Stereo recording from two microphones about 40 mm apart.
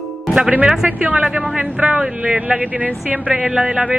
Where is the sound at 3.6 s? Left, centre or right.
Right.